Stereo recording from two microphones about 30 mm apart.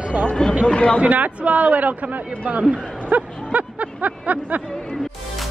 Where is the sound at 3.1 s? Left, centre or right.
Right.